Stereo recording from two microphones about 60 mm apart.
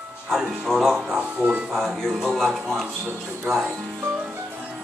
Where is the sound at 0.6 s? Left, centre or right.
Centre.